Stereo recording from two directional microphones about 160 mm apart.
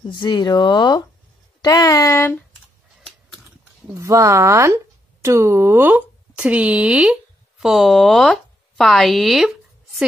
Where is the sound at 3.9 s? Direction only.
20° right (ahead or behind).